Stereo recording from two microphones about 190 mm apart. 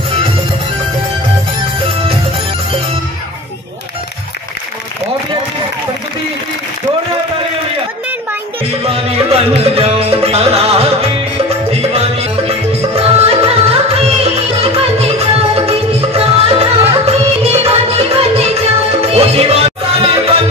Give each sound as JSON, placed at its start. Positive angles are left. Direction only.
{"t": 8.5, "sound": "music", "side_deg": -30}